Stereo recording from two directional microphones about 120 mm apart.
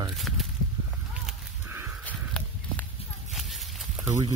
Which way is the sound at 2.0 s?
15° left (ahead or behind).